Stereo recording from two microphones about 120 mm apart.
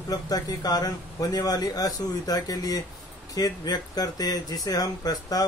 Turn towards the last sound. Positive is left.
turn(degrees=30)  # may be behind; listen again after turning